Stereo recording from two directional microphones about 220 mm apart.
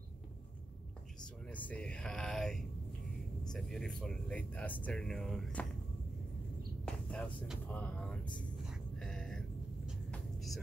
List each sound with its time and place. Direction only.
1.2 s speech: 5° left (ahead or behind)
6.9 s vehicle: 5° left (ahead or behind)
9.8 s music: centre (ahead or behind)